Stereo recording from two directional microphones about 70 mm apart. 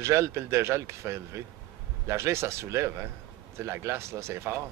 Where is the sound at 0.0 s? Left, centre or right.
Right.